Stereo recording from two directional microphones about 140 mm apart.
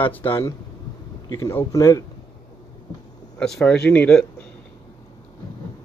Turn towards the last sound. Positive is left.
turn(degrees=10)  # may be behind; listen again after turning